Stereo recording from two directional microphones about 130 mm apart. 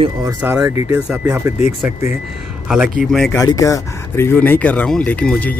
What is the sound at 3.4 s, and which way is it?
Speech, 25° left (ahead or behind).